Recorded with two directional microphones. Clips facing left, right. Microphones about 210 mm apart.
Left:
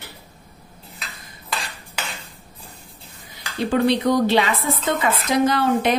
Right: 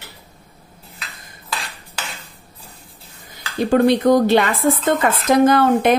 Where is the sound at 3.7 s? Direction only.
50° right (ahead or behind).